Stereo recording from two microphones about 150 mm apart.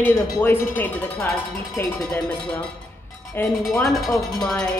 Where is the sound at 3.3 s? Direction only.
15° left (ahead or behind).